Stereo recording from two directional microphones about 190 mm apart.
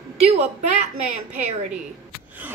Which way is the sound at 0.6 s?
40° right (ahead or behind).